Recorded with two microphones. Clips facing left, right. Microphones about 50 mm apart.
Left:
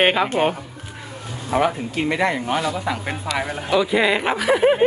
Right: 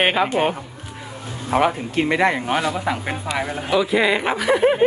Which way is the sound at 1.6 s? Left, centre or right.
Right.